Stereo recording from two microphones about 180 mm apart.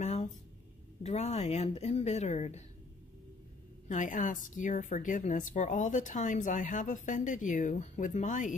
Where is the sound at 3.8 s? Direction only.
45° left (ahead or behind).